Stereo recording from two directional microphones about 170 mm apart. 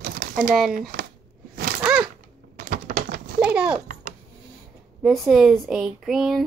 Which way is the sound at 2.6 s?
55° right (ahead or behind).